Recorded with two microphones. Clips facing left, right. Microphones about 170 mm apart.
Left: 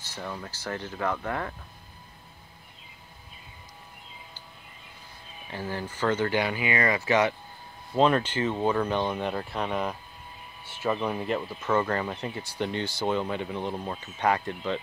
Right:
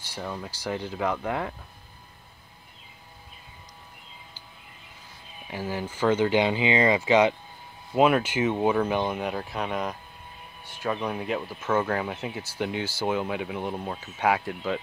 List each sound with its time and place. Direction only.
0.1 s speech: 10° right (ahead or behind)
5.5 s speech: 10° right (ahead or behind)